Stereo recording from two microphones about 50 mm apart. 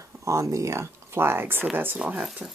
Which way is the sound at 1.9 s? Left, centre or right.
Right.